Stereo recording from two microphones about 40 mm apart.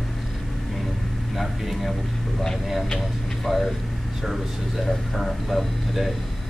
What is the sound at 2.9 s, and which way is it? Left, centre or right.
Speech, centre.